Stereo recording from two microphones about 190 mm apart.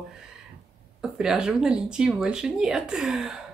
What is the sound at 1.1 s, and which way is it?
Speech, 5° right (ahead or behind).